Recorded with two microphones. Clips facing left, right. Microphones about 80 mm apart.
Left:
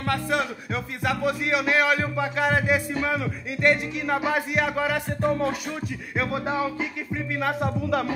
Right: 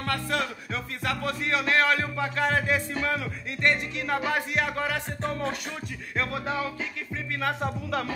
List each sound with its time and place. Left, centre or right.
0.0 s speech: centre
1.0 s music: centre
7.8 s speech: centre